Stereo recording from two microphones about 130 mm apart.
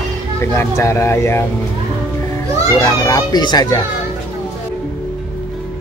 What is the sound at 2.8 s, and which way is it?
Speech, 30° left (ahead or behind).